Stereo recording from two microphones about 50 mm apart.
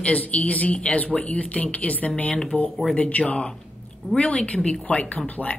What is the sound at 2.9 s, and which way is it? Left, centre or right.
Speech, left.